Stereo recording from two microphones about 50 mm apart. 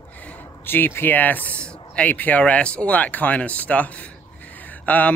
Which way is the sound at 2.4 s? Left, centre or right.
Left.